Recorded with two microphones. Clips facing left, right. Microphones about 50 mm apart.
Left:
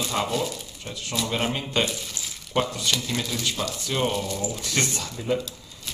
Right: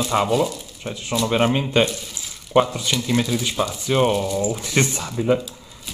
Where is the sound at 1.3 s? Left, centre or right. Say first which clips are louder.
Right 8 dB; right.